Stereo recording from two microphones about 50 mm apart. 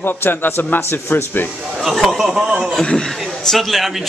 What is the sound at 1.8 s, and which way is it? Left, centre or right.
Speech, centre.